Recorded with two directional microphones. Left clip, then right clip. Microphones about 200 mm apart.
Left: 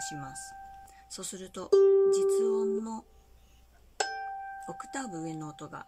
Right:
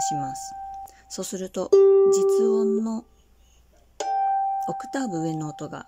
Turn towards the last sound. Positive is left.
turn(degrees=-30)  # may be behind; listen again after turning